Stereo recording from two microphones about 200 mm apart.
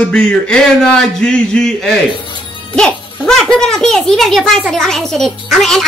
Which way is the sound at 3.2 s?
Centre (ahead or behind).